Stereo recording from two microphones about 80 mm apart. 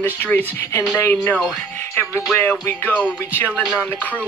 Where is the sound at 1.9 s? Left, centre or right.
Left.